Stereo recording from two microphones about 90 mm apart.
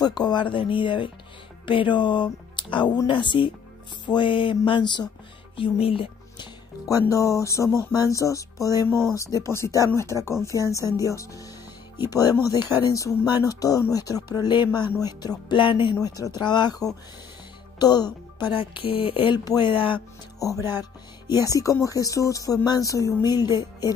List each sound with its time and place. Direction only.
0.0 s speech: 55° left (ahead or behind)
5.6 s speech: 90° left; by 6.5 s 75° left (ahead or behind)
6.9 s speech: 35° left (ahead or behind); by 14.9 s 60° left (ahead or behind)
15.0 s speech: 45° left (ahead or behind)
15.5 s speech: 65° left (ahead or behind)
16.0 s speech: 50° left (ahead or behind)
18.5 s speech: 75° left (ahead or behind)
19.3 s speech: 50° left (ahead or behind)
19.7 s speech: 75° left (ahead or behind)
20.3 s speech: 40° left (ahead or behind)